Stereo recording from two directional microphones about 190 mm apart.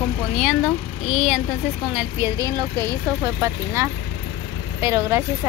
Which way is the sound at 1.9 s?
15° right (ahead or behind).